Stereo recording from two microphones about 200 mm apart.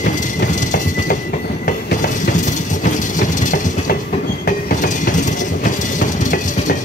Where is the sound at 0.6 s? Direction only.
40° left (ahead or behind).